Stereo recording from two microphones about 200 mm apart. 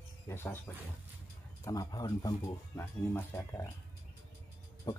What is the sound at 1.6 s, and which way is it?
Speech, 15° left (ahead or behind).